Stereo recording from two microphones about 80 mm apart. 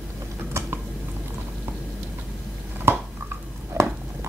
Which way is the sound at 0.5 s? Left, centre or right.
Right.